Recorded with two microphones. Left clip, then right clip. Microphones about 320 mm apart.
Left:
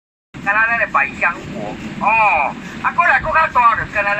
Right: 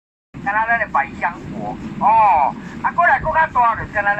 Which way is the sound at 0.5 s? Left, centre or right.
Right.